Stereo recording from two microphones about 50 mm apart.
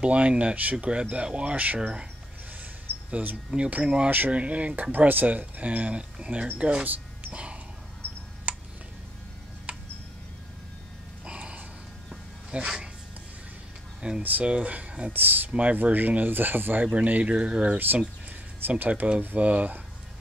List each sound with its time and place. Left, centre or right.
0.0 s speech: right
3.1 s speech: right
3.5 s speech: right
4.9 s speech: right
8.5 s tick-tock: right
11.2 s gasp: right
12.4 s a sound: centre
14.0 s speech: right
15.1 s speech: right
16.8 s speech: right
17.7 s speech: right